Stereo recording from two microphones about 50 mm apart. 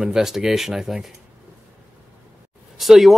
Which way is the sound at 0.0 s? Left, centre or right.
Centre.